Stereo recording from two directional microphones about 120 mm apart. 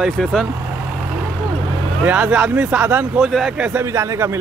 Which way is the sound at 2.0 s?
15° right (ahead or behind).